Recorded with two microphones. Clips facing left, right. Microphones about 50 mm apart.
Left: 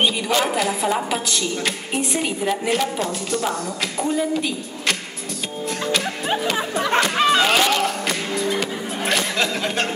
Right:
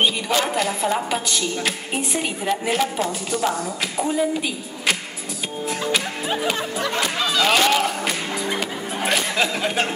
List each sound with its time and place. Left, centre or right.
0.0 s a woman's voice: centre
7.2 s speech: left
7.4 s music: centre
8.5 s speech: centre